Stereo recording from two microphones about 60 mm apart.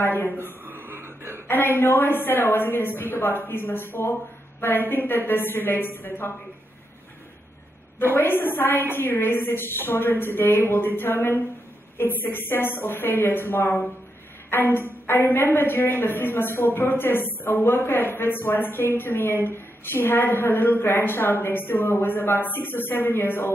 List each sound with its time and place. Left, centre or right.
0.0 s a woman's voice: left
0.7 s a sound: right
1.5 s a woman's voice: left
8.2 s a woman's voice: left